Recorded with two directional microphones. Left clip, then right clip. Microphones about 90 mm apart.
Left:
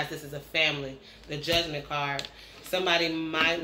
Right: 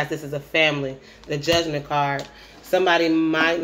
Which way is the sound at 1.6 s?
30° right (ahead or behind).